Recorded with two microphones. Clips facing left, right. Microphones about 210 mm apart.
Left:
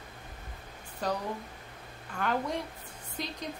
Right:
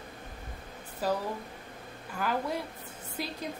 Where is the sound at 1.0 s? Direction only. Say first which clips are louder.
Right 2 dB; 5° right (ahead or behind).